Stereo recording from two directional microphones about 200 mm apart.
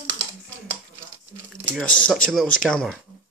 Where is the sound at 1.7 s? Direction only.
5° left (ahead or behind).